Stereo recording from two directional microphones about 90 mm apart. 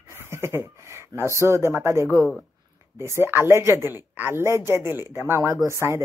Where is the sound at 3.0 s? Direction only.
30° right (ahead or behind).